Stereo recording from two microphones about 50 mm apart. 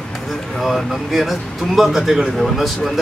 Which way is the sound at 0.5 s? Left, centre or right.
Centre.